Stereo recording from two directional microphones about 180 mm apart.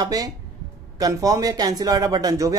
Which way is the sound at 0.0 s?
20° right (ahead or behind).